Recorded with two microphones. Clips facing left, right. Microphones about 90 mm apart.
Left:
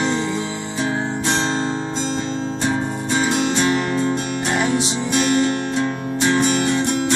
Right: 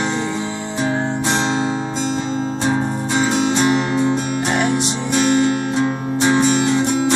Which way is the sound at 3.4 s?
20° right (ahead or behind).